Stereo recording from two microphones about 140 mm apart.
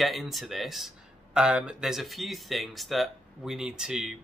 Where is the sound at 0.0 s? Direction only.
Centre (ahead or behind).